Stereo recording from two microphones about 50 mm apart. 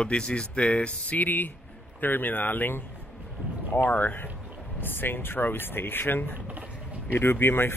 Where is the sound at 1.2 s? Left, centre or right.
Left.